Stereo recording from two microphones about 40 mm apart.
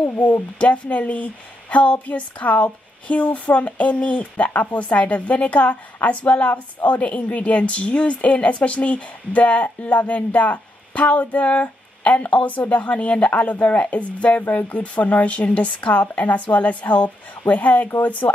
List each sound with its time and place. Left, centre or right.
0.2 s speech: left